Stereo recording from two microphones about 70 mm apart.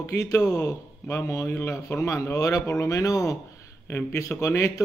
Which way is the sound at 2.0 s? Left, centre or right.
Left.